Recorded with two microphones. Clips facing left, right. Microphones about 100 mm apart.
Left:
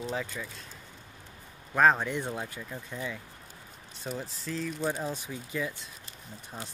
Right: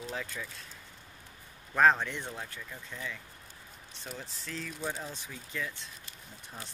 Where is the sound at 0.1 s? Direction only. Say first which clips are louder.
Left 4 dB; 5° left (ahead or behind).